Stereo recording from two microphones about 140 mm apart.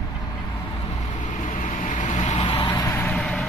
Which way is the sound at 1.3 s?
65° left (ahead or behind).